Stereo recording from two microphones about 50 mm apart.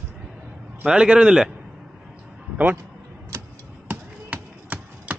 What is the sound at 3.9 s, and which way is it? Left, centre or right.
Basketball bounce, right.